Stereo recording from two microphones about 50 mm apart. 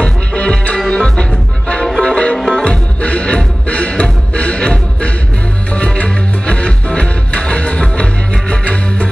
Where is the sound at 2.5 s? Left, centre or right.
Left.